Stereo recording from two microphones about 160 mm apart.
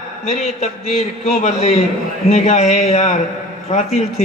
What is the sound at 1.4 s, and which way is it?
A man's voice, 45° left (ahead or behind).